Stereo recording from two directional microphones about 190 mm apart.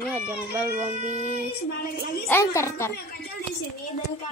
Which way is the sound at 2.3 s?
15° left (ahead or behind).